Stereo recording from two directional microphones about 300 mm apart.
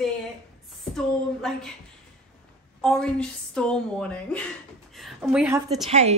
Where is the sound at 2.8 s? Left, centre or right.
Centre.